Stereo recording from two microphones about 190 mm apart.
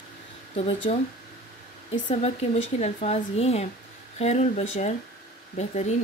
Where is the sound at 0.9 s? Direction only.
30° left (ahead or behind).